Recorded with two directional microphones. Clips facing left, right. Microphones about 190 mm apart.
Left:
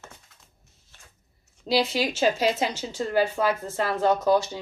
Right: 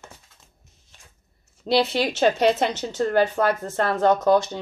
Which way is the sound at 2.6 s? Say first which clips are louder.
Right 4 dB; 10° left (ahead or behind).